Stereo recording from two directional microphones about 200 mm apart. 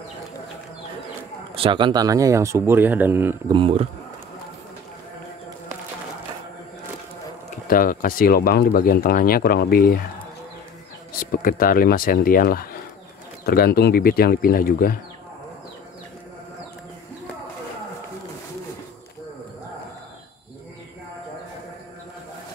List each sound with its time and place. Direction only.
1.5 s speech: 25° right (ahead or behind)
3.5 s speech: 30° right (ahead or behind)
7.6 s speech: 45° left (ahead or behind)
11.1 s speech: 45° left (ahead or behind)